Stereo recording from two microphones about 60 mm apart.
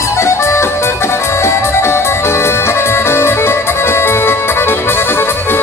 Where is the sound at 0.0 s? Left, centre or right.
Left.